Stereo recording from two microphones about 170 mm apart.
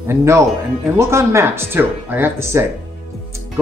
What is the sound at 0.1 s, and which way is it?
Speech, 15° right (ahead or behind).